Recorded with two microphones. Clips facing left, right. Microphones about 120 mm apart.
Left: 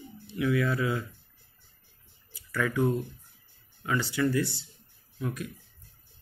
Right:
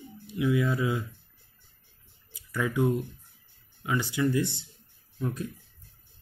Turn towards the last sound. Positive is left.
turn(degrees=-30)  # may be behind; listen again after turning